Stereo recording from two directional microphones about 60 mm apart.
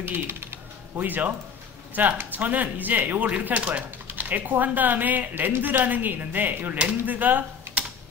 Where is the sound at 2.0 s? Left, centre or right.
Right.